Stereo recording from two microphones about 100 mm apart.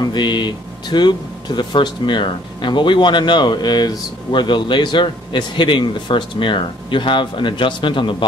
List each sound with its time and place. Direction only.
0.0 s speech: 45° left (ahead or behind)